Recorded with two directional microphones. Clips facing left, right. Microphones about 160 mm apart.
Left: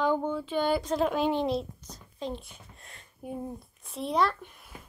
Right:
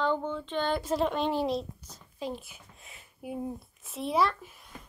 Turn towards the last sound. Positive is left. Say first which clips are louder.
# left 1 dB
turn(degrees=0)  # may be behind; listen again after turning